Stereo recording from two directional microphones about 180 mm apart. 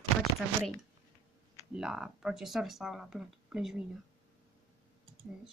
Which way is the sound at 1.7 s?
5° right (ahead or behind).